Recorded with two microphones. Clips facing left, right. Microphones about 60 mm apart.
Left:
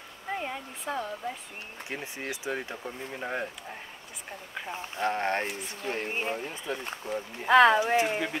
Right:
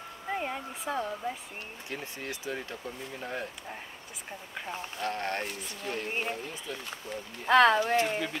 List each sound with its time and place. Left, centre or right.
0.3 s speech: centre
1.9 s speech: left
4.7 s speech: left
6.0 s speech: centre
6.3 s speech: left
7.1 s speech: centre